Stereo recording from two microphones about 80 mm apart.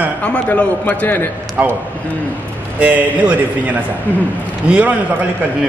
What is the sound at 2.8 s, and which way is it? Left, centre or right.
A man's voice, centre.